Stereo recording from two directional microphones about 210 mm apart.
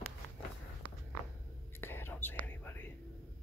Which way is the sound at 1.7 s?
10° left (ahead or behind).